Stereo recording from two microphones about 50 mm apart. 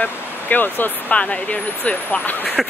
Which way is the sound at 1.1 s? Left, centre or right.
Left.